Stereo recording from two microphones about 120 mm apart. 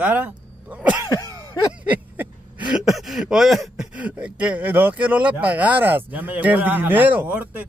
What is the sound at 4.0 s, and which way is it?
Speech, 10° right (ahead or behind).